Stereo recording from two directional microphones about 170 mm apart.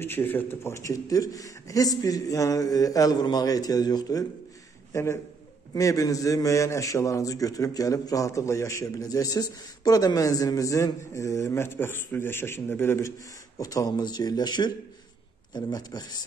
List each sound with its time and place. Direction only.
0.0 s a man's voice: 10° left (ahead or behind)